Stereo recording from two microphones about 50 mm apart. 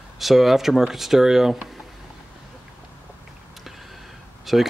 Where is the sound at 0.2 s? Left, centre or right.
Centre.